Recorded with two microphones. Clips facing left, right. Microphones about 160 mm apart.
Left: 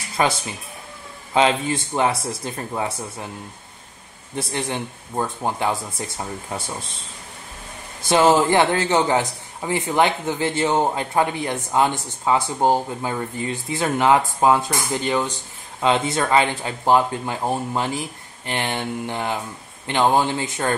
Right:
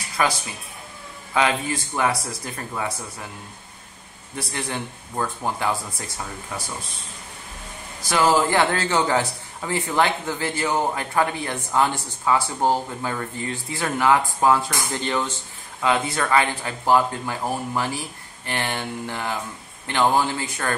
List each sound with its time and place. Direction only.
0.2 s a man's voice: 25° left (ahead or behind)
4.4 s a man's voice: 25° left (ahead or behind)
8.0 s a man's voice: 25° left (ahead or behind)